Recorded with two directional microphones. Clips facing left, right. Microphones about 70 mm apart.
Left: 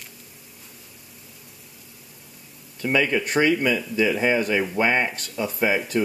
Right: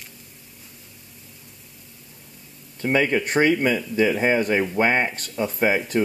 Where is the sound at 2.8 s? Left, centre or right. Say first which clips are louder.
Right 1 dB; right.